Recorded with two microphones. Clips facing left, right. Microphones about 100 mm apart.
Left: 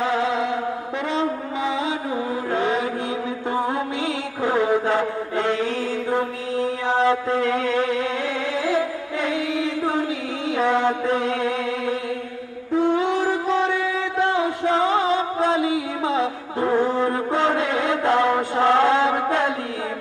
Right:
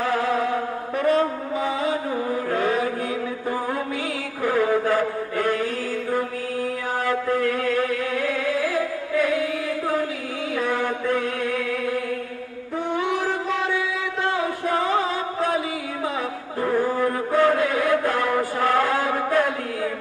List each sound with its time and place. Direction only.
0.0 s chant: 20° left (ahead or behind)
1.0 s a sound: 20° left (ahead or behind)
2.5 s mantra: 25° left (ahead or behind)
4.4 s chant: 20° left (ahead or behind)
6.9 s mantra: 25° left (ahead or behind)
8.5 s music: 25° left (ahead or behind)
10.5 s chant: 25° left (ahead or behind)
14.2 s music: 25° left (ahead or behind)